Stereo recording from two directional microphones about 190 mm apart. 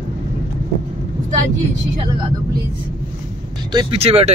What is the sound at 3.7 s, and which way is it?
Speech, 25° right (ahead or behind).